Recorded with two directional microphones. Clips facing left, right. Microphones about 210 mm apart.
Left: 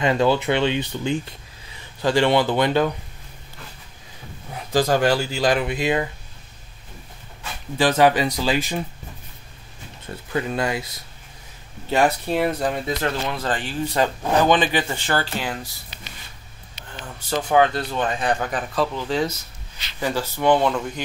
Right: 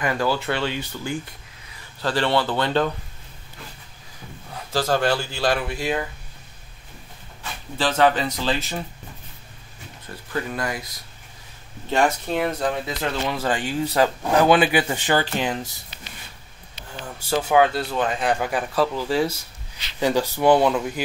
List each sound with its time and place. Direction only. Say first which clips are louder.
0.0 s speech: left 4 dB; 20° left (ahead or behind)
4.7 s speech: left 3 dB; 15° left (ahead or behind)
7.7 s speech: left 2 dB; 10° left (ahead or behind)
10.5 s speech: left 4 dB; 25° left (ahead or behind)
11.9 s speech: left 1 dB; 5° left (ahead or behind)
13.3 s speech: right 2 dB; 10° right (ahead or behind)
17.0 s speech: right 2 dB; 10° right (ahead or behind)